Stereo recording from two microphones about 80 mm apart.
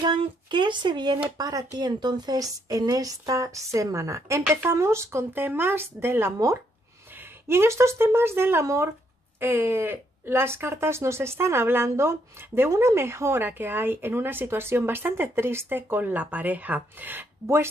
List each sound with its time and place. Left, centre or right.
0.0 s speech: right
1.4 s a woman's voice: right
9.4 s speech: right